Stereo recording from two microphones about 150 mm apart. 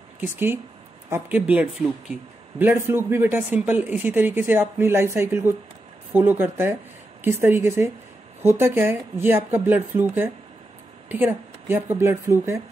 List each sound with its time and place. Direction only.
0.2 s speech: 15° right (ahead or behind)